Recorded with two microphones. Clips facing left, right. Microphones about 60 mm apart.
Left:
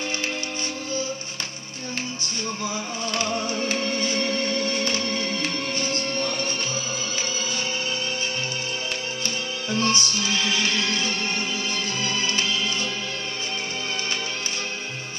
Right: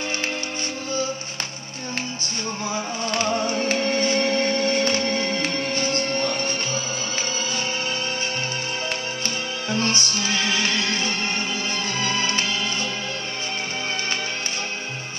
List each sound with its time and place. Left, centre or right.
3.1 s music: right
9.2 s music: right